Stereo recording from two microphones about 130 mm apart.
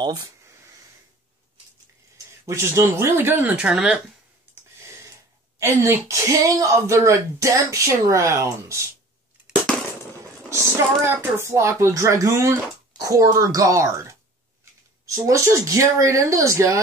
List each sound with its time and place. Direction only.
0.0 s speech: 30° right (ahead or behind)
2.4 s speech: 20° right (ahead or behind); by 4.0 s 5° right (ahead or behind)
5.6 s speech: 20° right (ahead or behind)
10.5 s speech: 20° right (ahead or behind)